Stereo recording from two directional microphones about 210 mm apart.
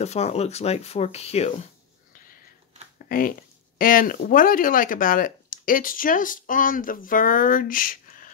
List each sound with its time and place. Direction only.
0.0 s speech: 30° left (ahead or behind)
3.1 s speech: 40° left (ahead or behind)